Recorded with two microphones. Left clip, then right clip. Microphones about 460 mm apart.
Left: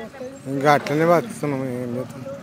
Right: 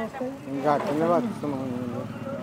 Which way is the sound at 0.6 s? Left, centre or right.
Left.